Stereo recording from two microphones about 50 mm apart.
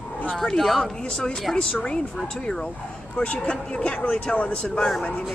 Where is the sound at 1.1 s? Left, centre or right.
Centre.